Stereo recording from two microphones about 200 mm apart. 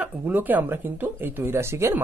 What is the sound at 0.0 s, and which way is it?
Speech, 10° right (ahead or behind).